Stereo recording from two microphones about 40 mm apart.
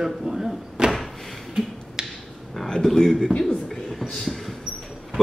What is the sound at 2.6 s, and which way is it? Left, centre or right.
Speech, centre.